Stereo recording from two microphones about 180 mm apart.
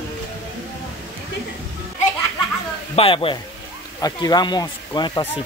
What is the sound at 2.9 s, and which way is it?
Speech, 30° left (ahead or behind).